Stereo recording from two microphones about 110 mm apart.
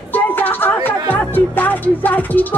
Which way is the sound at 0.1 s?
20° left (ahead or behind).